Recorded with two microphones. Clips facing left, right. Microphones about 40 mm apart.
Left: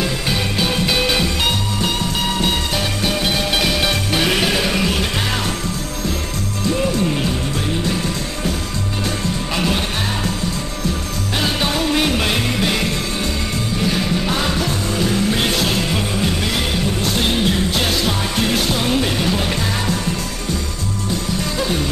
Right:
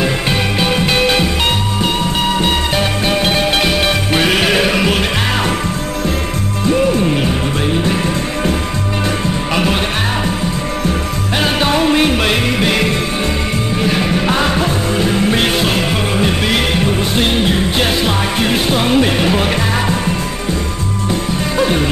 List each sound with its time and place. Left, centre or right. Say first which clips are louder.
0.6 s music: right 4 dB; right
3.1 s music: right 5 dB; right
6.7 s music: right 6 dB; right
11.4 s music: right 6 dB; right
21.5 s music: right 8 dB; right